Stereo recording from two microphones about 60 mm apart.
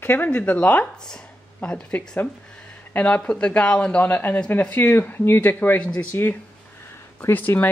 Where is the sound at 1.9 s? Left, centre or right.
Left.